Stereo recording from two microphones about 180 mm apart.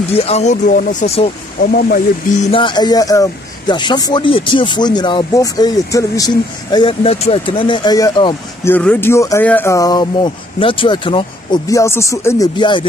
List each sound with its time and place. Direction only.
0.1 s speech: 35° left (ahead or behind)
1.6 s speech: 55° left (ahead or behind)
2.5 s speech: 25° left (ahead or behind)
8.6 s speech: 10° left (ahead or behind)
12.5 s speech: 25° left (ahead or behind)